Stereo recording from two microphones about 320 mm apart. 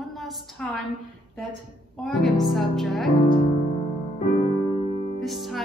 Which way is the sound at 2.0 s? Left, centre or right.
Centre.